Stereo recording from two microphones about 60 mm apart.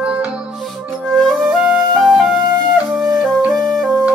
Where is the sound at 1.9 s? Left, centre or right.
Centre.